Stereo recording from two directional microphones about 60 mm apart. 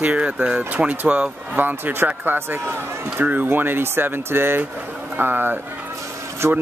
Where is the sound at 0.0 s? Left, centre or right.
Right.